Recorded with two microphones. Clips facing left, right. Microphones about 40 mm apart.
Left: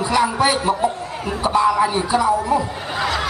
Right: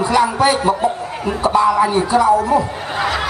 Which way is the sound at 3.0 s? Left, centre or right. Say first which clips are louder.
Right 2 dB; centre.